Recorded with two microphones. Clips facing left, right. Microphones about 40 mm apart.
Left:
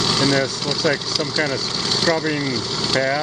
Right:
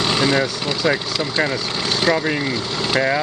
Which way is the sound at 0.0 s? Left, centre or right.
Right.